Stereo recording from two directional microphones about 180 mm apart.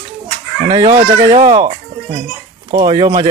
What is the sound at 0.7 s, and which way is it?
Speech, 20° right (ahead or behind).